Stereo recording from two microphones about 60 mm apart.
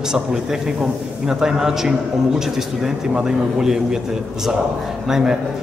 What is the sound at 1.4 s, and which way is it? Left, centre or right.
A man's voice, centre.